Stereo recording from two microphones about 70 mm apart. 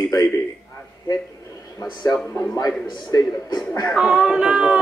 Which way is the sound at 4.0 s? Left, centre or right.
Centre.